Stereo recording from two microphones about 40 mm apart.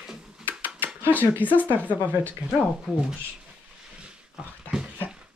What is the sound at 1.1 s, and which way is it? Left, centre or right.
Speech, left.